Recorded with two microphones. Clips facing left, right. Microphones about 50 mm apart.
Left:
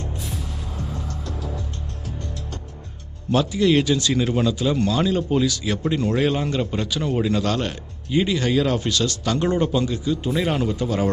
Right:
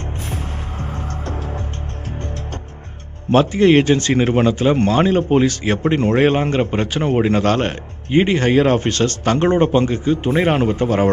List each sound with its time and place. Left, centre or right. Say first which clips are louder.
0.3 s music: right 4 dB; right
3.3 s a man's voice: right 6 dB; right